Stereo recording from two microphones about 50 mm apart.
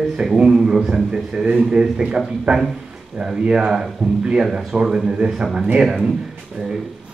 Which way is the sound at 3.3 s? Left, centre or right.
Centre.